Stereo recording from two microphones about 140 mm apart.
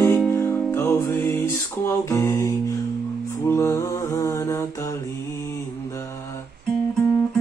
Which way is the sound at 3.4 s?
20° left (ahead or behind).